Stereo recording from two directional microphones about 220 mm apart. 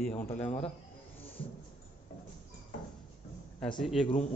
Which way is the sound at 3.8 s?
Centre (ahead or behind).